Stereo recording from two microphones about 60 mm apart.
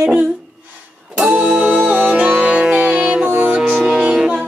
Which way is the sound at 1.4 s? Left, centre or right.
Centre.